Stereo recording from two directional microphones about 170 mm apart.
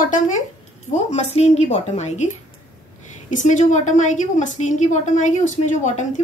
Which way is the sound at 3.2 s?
45° left (ahead or behind).